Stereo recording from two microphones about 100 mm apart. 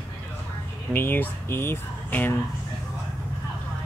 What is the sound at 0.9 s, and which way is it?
Speech, 20° left (ahead or behind).